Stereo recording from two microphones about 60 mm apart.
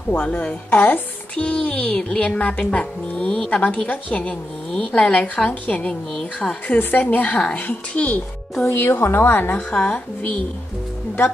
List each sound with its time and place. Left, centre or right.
0.2 s a woman's voice: left
8.6 s a woman's voice: left
9.7 s speech: centre